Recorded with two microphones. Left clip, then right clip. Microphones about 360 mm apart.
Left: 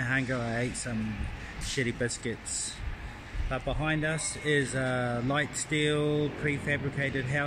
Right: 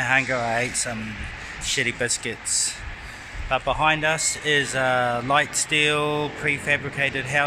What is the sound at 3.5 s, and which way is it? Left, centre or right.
Speech, right.